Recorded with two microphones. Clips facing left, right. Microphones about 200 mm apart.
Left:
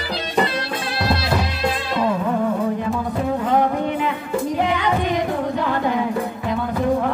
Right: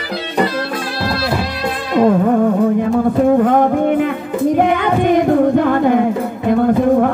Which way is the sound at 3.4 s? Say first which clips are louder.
Right 7 dB; 50° right (ahead or behind).